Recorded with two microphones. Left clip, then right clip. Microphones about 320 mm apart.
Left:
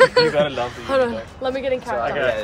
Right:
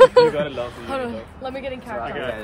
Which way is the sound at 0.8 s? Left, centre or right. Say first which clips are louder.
Left 7 dB; centre.